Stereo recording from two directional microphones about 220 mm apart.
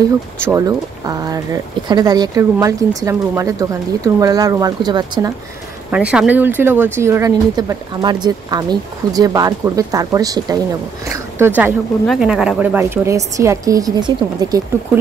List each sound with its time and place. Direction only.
0.4 s speech: 15° right (ahead or behind)
5.9 s speech: 5° right (ahead or behind)